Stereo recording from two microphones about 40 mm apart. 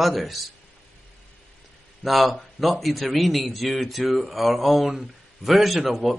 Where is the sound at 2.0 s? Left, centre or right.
Centre.